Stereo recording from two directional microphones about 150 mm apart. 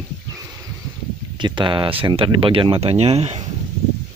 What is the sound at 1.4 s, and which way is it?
Speech, 30° right (ahead or behind).